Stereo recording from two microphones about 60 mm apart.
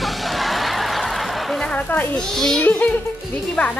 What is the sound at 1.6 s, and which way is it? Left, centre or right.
Speech, left.